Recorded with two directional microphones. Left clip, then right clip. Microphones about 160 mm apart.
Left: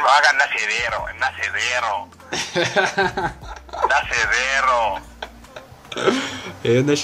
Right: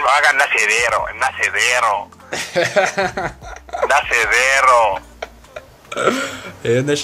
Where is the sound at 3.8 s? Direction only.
35° right (ahead or behind).